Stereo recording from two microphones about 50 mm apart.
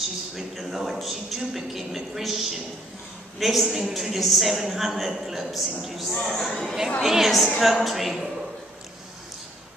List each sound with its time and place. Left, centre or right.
0.4 s a woman's voice: centre